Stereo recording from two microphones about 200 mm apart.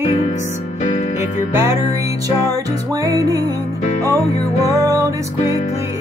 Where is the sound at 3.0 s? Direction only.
15° right (ahead or behind).